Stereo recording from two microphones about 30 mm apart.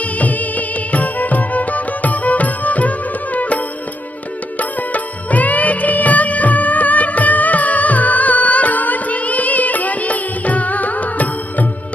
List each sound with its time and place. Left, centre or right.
0.0 s music: left
4.6 s music of bollywood: left